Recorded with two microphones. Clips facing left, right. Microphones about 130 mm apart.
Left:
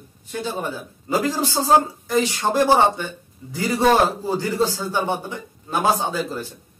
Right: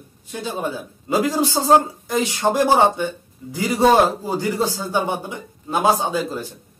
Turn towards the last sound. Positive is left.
turn(degrees=-15)  # may be behind; listen again after turning